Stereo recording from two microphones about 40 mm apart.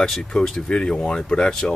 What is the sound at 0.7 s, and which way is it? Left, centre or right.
Speech, left.